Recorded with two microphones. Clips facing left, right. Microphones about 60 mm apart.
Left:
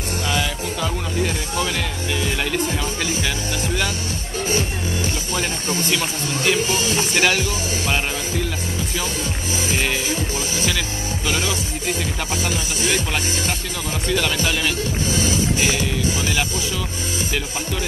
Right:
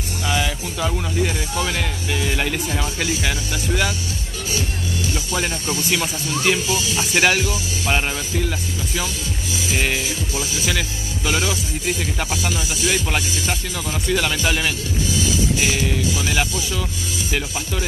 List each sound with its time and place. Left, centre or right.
0.3 s speech: centre
5.3 s speech: centre
6.7 s speech: left
7.2 s speech: centre
10.0 s music: left
11.2 s speech: centre
12.9 s speech: centre